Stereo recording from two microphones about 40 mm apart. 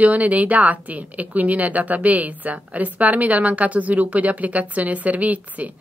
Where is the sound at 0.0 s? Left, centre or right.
Right.